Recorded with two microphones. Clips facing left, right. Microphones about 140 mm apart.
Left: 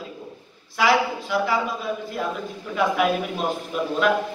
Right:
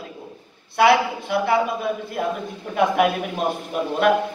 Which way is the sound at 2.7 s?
50° right (ahead or behind).